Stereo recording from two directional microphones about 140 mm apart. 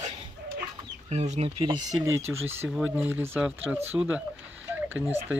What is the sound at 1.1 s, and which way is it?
Speech, 55° right (ahead or behind).